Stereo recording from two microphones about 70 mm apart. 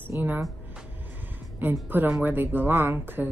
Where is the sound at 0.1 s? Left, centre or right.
Right.